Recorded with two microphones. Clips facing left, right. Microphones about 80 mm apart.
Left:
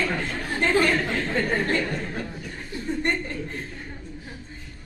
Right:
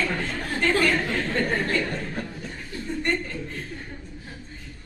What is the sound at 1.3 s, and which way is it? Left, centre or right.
Speech, centre.